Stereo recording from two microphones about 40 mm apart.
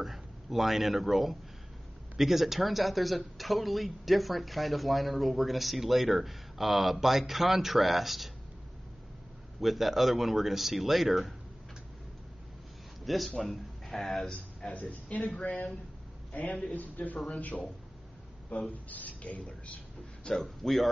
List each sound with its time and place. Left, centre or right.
0.0 s speech: centre
9.6 s speech: centre
13.0 s a man's voice: centre
14.3 s a man's voice: left
18.5 s a man's voice: left
20.3 s speech: centre